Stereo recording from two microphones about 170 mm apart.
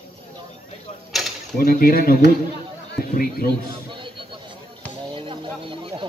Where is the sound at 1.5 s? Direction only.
60° left (ahead or behind).